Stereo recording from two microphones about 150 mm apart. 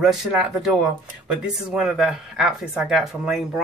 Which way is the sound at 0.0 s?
5° right (ahead or behind).